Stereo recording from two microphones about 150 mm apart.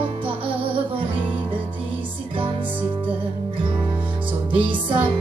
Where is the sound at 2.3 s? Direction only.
35° right (ahead or behind).